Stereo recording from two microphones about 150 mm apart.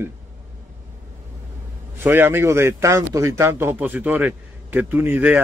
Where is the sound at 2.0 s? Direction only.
15° right (ahead or behind).